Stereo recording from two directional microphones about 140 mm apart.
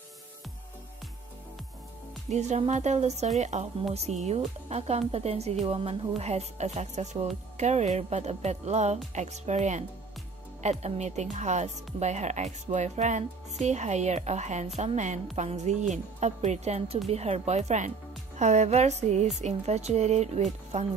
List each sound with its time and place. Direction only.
2.2 s a woman's voice: 55° right (ahead or behind)
3.3 s music: 55° right (ahead or behind)
3.9 s a woman's voice: 50° right (ahead or behind)
14.8 s music: 55° right (ahead or behind)
15.3 s a woman's voice: 55° right (ahead or behind)